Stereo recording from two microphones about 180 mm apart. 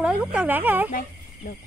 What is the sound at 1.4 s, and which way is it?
Speech, 50° left (ahead or behind).